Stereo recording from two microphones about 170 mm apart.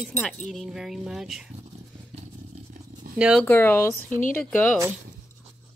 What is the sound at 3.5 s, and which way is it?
Speech, 10° left (ahead or behind).